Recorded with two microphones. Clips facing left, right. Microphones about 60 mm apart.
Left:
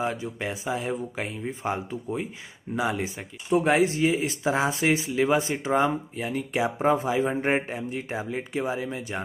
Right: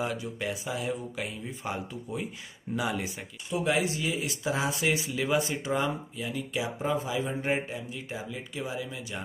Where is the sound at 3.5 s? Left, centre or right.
Left.